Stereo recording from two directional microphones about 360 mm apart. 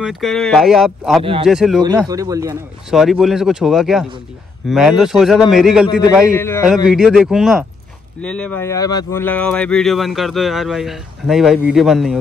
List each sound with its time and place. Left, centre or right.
0.0 s speech: centre